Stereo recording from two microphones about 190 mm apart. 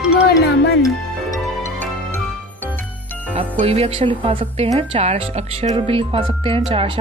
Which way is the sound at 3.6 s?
30° right (ahead or behind).